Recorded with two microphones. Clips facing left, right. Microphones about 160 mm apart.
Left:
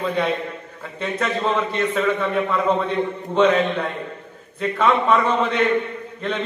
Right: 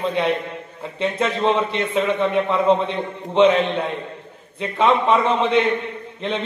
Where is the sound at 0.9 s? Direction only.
25° right (ahead or behind).